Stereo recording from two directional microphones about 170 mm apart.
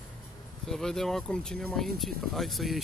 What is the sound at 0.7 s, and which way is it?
Speech, centre (ahead or behind).